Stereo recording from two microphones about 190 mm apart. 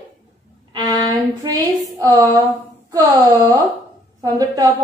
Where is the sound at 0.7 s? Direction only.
20° right (ahead or behind).